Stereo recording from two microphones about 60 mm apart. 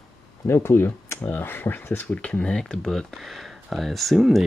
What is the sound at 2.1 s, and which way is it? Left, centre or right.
Speech, left.